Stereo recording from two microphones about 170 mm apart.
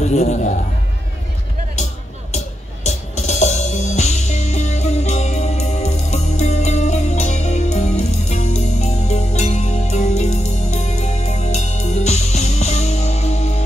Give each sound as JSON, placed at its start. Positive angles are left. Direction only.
{"t": 0.0, "sound": "a man's voice", "side_deg": 40}
{"t": 2.3, "sound": "music", "side_deg": 40}